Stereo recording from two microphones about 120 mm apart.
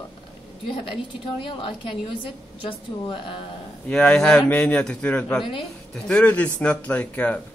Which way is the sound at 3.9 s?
10° left (ahead or behind).